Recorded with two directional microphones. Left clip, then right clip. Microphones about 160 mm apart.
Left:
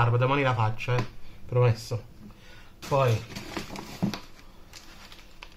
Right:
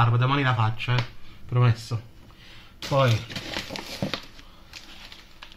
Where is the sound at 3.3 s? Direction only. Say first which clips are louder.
Right 5 dB; 50° right (ahead or behind).